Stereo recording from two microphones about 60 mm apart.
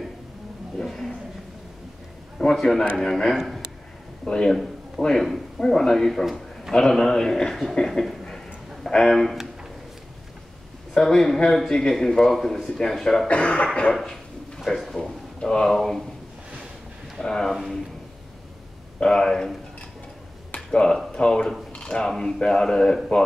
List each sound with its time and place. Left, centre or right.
0.7 s a sound: centre
2.3 s a man's voice: centre
7.7 s a sound: centre
8.9 s speech: centre
11.0 s a man's voice: centre
13.3 s speech: left
13.9 s drawer open or close: centre
15.0 s speech: centre
17.2 s a man's voice: centre
18.9 s a man's voice: centre
20.5 s a sound: centre
21.1 s a man's voice: centre
21.7 s a sound: centre
22.0 s a man's voice: centre